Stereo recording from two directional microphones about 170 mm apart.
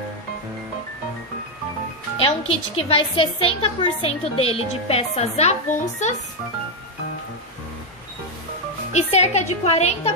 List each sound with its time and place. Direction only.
2.1 s a woman's voice: 35° left (ahead or behind)
8.9 s a woman's voice: 40° left (ahead or behind)